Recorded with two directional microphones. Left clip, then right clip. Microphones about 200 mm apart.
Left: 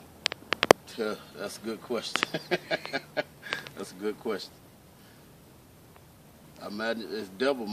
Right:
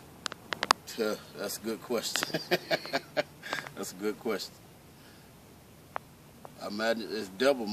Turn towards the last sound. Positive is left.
turn(degrees=-10)  # may be behind; listen again after turning